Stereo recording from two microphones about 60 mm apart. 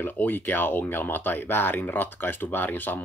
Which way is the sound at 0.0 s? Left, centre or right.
Left.